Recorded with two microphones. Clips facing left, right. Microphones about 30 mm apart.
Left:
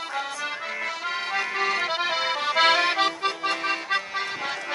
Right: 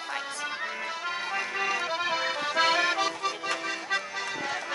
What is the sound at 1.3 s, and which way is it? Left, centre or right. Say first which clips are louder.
Accordion: left 5 dB; left.